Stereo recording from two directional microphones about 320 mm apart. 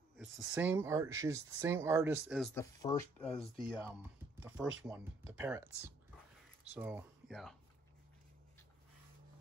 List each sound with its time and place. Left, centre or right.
0.2 s speech: centre
4.4 s speech: centre